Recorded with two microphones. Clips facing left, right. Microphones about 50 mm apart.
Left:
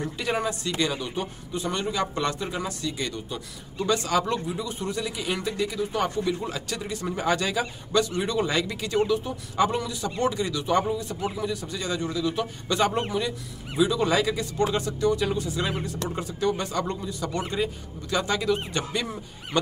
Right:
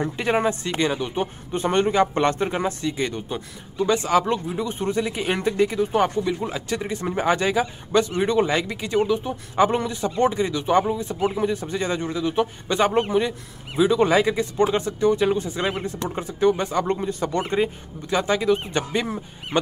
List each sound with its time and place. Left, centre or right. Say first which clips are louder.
0.0 s speech: right 6 dB; right
16.9 s speech: right 6 dB; right
18.1 s speech: right 4 dB; right